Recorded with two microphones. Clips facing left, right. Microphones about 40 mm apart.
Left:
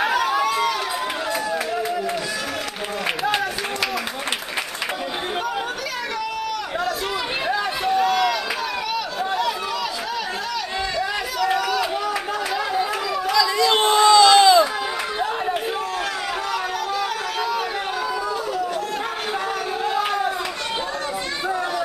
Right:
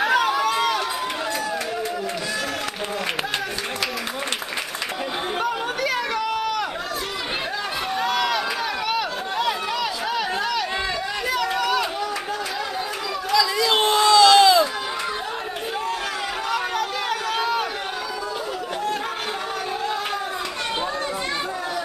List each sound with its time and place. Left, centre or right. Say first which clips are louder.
0.5 s run: even; centre
7.9 s run: left 4 dB; centre
8.9 s a sound: left 1 dB; centre
11.5 s run: even; centre
13.3 s a sound: left 1 dB; centre
17.4 s chatter: even; centre